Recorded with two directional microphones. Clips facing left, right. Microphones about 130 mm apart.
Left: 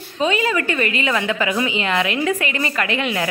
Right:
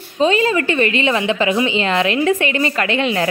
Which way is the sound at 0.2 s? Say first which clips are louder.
Right 4 dB; 30° right (ahead or behind).